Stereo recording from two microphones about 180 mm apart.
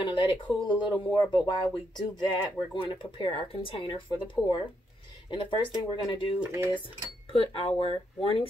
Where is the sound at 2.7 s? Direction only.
25° left (ahead or behind).